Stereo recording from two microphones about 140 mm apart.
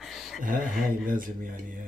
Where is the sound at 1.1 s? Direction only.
85° right.